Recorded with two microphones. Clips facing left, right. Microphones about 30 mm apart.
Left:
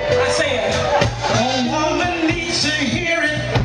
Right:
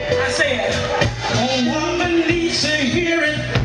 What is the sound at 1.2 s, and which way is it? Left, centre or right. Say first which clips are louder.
Music: left 1 dB; centre.